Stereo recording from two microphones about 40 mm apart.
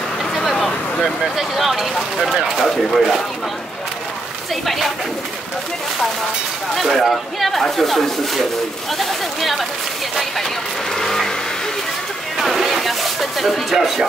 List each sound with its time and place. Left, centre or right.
0.4 s a sound: centre
1.0 s speech: centre
6.7 s speech: centre
11.0 s vehicle: centre
12.4 s speech: centre